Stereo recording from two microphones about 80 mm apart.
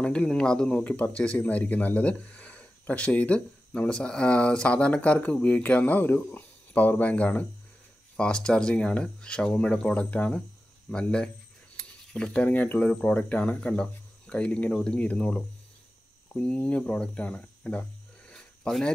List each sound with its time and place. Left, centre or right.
0.0 s speech: centre